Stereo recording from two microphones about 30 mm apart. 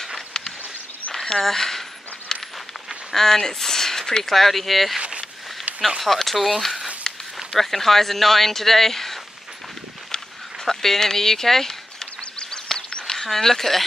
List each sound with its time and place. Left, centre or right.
1.1 s a sound: centre
3.2 s speech: centre
6.0 s speech: centre
7.5 s speech: centre
10.1 s a sound: centre
13.1 s speech: centre